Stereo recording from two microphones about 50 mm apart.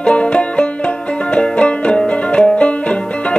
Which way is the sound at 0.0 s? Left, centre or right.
Left.